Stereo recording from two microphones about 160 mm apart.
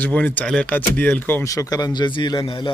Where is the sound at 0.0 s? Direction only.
10° left (ahead or behind).